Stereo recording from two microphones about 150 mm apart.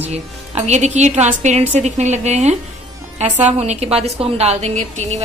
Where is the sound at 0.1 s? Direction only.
50° right (ahead or behind).